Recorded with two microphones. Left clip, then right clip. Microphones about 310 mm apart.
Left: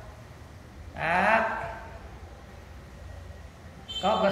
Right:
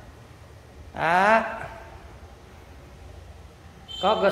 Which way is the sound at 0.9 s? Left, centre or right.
Centre.